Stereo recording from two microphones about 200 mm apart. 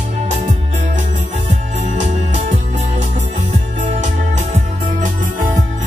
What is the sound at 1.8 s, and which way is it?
Music, 35° right (ahead or behind).